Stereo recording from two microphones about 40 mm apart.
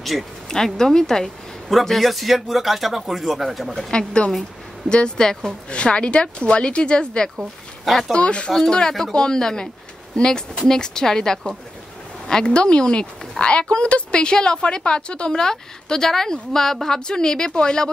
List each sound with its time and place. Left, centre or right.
0.0 s insect: centre
0.7 s speech: centre
3.9 s a woman's voice: left
5.7 s a woman's voice: left
7.8 s speech: centre
8.1 s a woman's voice: left
8.5 s a woman's voice: centre